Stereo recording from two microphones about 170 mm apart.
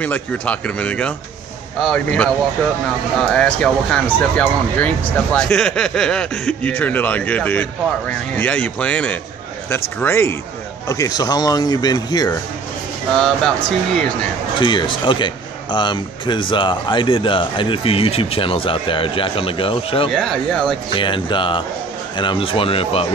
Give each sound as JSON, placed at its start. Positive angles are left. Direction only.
{"t": 0.0, "sound": "speech", "side_deg": 10}
{"t": 13.1, "sound": "speech", "side_deg": 0}
{"t": 14.6, "sound": "speech", "side_deg": 30}
{"t": 20.1, "sound": "speech", "side_deg": 0}
{"t": 20.9, "sound": "speech", "side_deg": 30}